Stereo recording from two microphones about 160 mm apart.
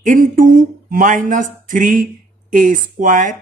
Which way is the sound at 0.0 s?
55° right (ahead or behind).